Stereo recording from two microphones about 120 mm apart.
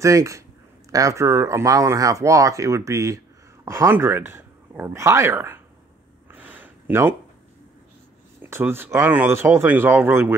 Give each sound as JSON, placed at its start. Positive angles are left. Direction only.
{"t": 0.0, "sound": "speech", "side_deg": -25}
{"t": 6.3, "sound": "a sound", "side_deg": -15}
{"t": 8.4, "sound": "speech", "side_deg": -20}